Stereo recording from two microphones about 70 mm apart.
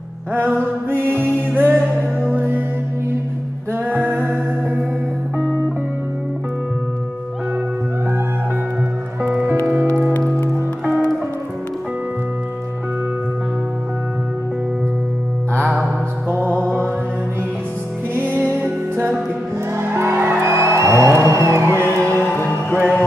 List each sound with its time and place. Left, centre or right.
0.3 s music: right
3.7 s music: right
16.6 s music: right
18.5 s music: right
22.2 s music: left